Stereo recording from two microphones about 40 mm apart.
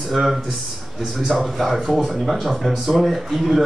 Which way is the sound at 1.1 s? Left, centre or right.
Centre.